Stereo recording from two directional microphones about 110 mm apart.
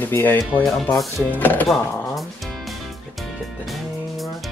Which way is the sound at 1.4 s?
15° left (ahead or behind).